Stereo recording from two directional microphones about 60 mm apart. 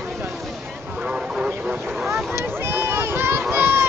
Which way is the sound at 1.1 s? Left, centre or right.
Centre.